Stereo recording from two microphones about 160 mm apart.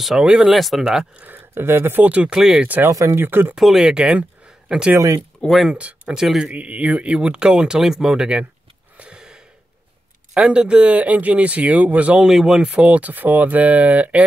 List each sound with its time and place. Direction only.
0.0 s speech: 5° right (ahead or behind)
2.9 s speech: 20° right (ahead or behind)
3.5 s speech: 5° right (ahead or behind)
4.9 s speech: 20° right (ahead or behind)
5.4 s speech: centre (ahead or behind)
8.9 s a sound: 5° right (ahead or behind)
10.3 s speech: 5° right (ahead or behind)